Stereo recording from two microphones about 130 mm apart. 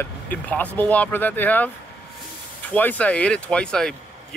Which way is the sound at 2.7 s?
10° left (ahead or behind).